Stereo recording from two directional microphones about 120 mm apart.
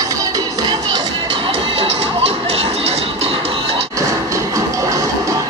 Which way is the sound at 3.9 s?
25° right (ahead or behind).